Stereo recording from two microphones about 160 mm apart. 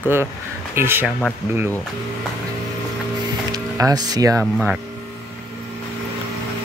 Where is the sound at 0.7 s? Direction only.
15° right (ahead or behind).